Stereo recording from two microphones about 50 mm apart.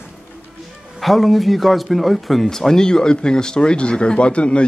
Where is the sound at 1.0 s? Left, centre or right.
Centre.